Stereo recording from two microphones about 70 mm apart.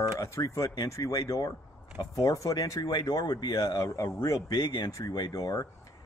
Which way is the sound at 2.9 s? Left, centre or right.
Left.